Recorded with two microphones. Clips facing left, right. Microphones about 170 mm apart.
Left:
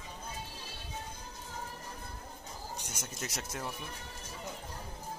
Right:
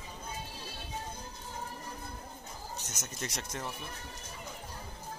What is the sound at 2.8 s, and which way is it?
Speech, 10° left (ahead or behind).